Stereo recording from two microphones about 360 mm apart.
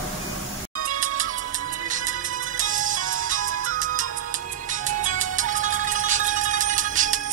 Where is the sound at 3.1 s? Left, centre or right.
Right.